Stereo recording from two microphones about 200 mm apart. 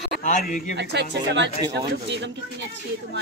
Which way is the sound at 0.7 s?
60° right (ahead or behind).